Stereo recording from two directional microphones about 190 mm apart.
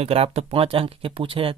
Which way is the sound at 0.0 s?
30° right (ahead or behind).